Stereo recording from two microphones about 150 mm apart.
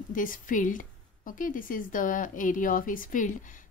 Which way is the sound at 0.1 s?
65° left (ahead or behind).